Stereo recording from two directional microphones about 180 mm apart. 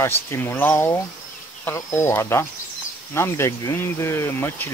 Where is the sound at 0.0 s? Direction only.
15° left (ahead or behind).